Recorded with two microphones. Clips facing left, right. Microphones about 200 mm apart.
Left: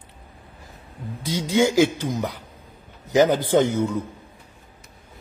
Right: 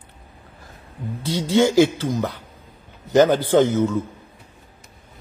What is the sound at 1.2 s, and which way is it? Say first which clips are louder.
Speech: right 2 dB; 15° left (ahead or behind).